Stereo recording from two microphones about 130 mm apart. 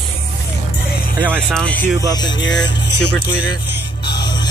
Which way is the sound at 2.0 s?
30° left (ahead or behind).